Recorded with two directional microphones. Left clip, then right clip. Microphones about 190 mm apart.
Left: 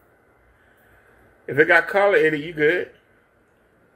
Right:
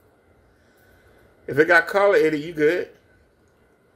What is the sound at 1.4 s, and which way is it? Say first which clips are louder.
Speech: even; 10° right (ahead or behind).